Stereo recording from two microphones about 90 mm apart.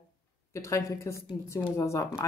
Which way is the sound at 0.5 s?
35° left (ahead or behind).